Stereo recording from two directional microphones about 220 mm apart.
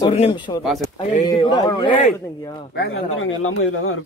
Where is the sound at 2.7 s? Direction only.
60° left (ahead or behind).